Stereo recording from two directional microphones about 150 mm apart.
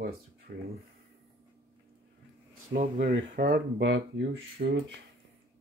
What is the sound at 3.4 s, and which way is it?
Speech, 90° right.